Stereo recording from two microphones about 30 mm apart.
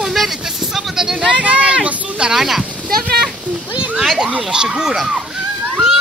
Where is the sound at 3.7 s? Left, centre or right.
Right.